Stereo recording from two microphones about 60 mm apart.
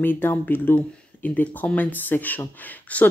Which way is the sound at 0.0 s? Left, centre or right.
Left.